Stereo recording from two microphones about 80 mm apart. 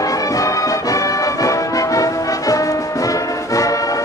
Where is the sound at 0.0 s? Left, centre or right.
Left.